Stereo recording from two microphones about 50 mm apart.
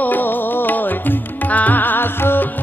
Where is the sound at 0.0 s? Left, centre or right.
Left.